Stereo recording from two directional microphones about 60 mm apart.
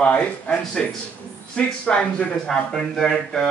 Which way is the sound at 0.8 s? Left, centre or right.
Centre.